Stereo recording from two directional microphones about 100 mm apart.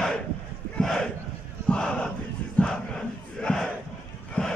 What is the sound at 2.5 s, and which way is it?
Crowd, 10° left (ahead or behind).